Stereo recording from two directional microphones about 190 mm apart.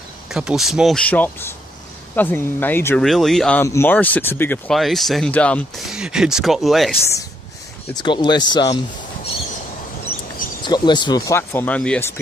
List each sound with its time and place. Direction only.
0.3 s speech: 5° right (ahead or behind)
3.0 s speech: centre (ahead or behind)
7.9 s speech: 25° left (ahead or behind)
10.6 s speech: 25° left (ahead or behind)